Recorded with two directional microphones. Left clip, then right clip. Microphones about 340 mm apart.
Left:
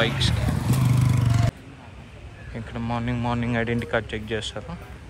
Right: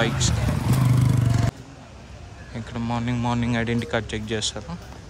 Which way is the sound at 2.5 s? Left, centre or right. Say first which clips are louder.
Right 1 dB; centre.